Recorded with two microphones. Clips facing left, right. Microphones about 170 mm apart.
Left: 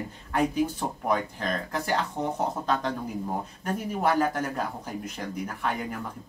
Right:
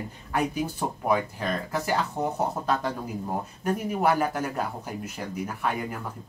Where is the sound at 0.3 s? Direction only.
5° right (ahead or behind).